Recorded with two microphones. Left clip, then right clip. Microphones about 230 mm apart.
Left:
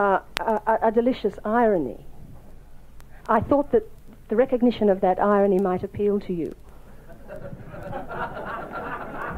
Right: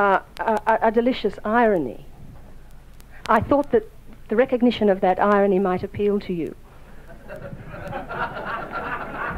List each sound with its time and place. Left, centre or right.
0.0 s speech: right
3.3 s a woman's voice: right
7.1 s a sound: right